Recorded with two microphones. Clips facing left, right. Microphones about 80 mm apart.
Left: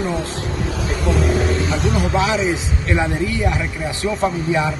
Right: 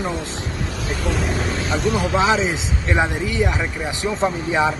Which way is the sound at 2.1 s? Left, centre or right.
Right.